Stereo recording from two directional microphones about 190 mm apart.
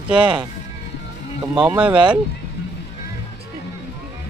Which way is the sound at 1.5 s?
10° right (ahead or behind).